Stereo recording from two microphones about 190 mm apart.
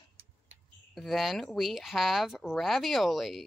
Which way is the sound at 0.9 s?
Centre (ahead or behind).